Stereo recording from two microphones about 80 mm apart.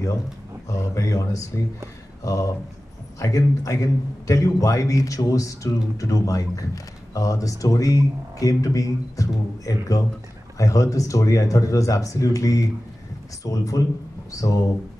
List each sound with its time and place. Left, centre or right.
0.7 s a man's voice: left